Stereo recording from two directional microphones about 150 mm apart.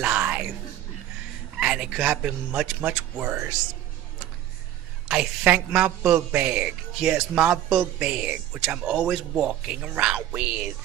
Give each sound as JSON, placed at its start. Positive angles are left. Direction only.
{"t": 0.0, "sound": "music", "side_deg": -10}
{"t": 1.6, "sound": "a man's voice", "side_deg": -5}
{"t": 5.0, "sound": "a man's voice", "side_deg": -5}